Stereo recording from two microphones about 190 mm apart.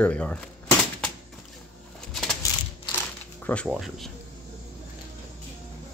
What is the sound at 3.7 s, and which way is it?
Speech, centre (ahead or behind).